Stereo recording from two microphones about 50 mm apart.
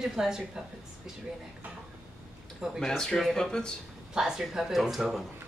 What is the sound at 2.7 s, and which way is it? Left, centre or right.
Speech, centre.